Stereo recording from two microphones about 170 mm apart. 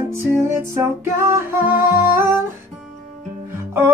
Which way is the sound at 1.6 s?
15° right (ahead or behind).